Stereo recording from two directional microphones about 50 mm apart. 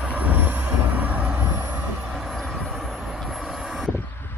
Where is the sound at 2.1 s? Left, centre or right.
Centre.